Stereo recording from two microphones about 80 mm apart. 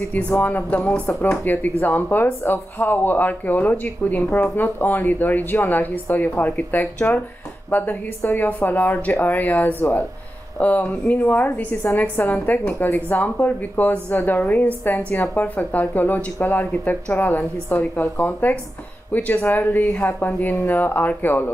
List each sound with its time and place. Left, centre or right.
0.1 s speech: centre